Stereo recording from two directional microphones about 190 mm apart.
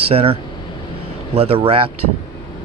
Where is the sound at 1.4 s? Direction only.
30° right (ahead or behind).